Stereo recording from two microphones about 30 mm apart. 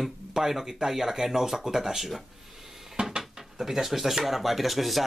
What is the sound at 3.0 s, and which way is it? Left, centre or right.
Dishes, right.